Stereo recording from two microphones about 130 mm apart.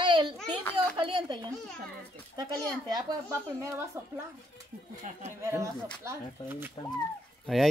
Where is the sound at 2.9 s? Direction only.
25° right (ahead or behind).